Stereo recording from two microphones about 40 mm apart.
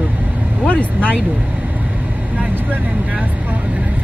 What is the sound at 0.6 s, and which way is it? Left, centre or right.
Vehicle, left.